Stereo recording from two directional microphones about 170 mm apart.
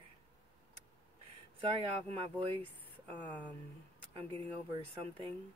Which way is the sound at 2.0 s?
35° right (ahead or behind).